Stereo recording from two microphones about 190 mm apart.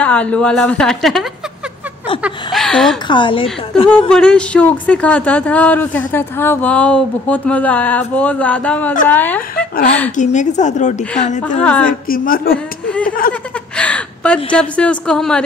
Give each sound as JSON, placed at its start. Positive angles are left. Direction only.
{"t": 0.0, "sound": "a woman's voice", "side_deg": 5}
{"t": 2.2, "sound": "a woman's voice", "side_deg": 0}
{"t": 3.1, "sound": "a woman's voice", "side_deg": 25}
{"t": 4.1, "sound": "speech", "side_deg": 5}
{"t": 10.1, "sound": "a woman's voice", "side_deg": 40}
{"t": 11.6, "sound": "speech", "side_deg": 5}
{"t": 12.1, "sound": "speech", "side_deg": 50}
{"t": 12.5, "sound": "a sound", "side_deg": 5}
{"t": 13.3, "sound": "a woman's voice", "side_deg": 5}